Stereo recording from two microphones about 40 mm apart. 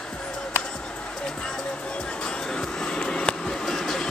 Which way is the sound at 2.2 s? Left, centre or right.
Centre.